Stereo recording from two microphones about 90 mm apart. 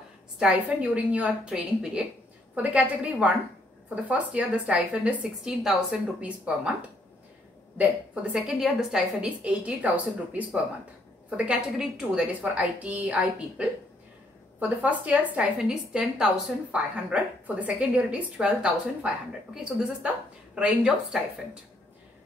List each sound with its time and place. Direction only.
0.4 s a woman's voice: 10° right (ahead or behind)
7.7 s a woman's voice: 15° right (ahead or behind)